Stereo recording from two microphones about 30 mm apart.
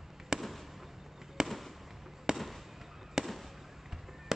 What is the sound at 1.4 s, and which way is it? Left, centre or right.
Fireworks, centre.